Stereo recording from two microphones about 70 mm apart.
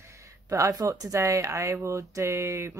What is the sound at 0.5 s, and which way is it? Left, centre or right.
Speech, right.